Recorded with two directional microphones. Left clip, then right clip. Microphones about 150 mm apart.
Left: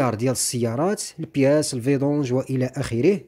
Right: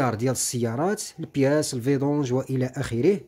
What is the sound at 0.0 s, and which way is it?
Speech, 15° left (ahead or behind).